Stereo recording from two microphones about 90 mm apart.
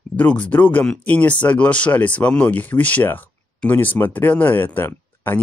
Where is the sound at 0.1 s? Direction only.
15° left (ahead or behind).